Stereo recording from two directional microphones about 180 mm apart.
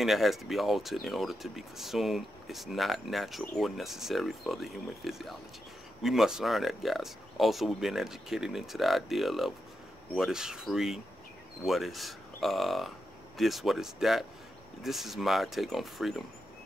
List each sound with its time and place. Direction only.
0.0 s speech: centre (ahead or behind)